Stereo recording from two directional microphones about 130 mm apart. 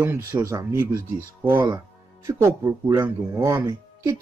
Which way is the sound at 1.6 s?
25° right (ahead or behind).